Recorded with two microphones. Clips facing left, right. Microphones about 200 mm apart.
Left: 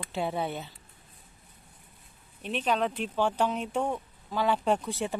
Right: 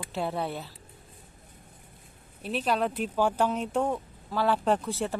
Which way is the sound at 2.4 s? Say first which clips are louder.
Right 1 dB; 5° right (ahead or behind).